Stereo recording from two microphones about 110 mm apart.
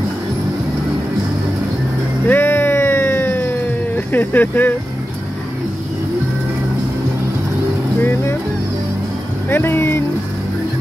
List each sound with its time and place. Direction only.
2.2 s a sound: 20° left (ahead or behind)
8.0 s speech: 20° left (ahead or behind)
9.5 s speech: 20° left (ahead or behind)